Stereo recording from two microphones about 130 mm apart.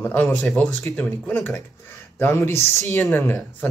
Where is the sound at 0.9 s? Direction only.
15° left (ahead or behind).